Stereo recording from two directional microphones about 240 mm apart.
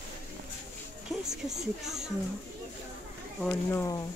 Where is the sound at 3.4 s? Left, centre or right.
Centre.